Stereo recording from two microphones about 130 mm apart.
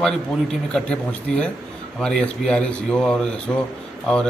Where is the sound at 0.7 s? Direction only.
10° left (ahead or behind).